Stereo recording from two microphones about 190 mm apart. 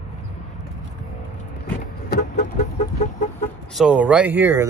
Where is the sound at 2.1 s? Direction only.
55° left (ahead or behind).